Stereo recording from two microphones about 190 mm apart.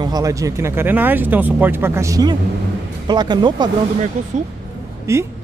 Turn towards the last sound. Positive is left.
turn(degrees=-15)  # may be behind; listen again after turning